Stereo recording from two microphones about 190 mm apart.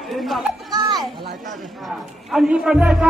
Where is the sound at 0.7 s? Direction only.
20° right (ahead or behind).